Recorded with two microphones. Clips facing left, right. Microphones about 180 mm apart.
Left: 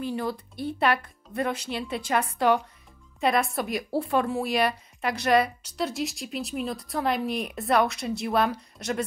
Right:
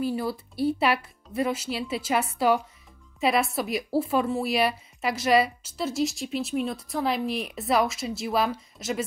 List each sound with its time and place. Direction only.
0.0 s a woman's voice: 5° right (ahead or behind)